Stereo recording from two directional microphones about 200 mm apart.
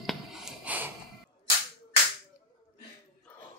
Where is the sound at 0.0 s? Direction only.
Centre (ahead or behind).